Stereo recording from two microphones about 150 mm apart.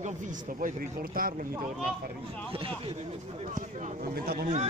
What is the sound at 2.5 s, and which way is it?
Speech, 40° right (ahead or behind).